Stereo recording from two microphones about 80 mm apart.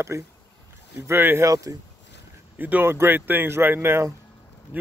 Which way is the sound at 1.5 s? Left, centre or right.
Right.